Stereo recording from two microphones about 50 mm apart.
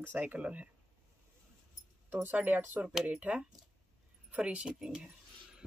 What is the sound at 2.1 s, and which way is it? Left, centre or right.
Speech, right.